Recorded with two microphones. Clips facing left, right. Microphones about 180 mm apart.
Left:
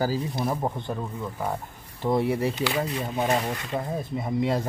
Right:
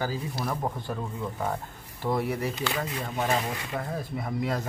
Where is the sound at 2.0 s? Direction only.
25° left (ahead or behind).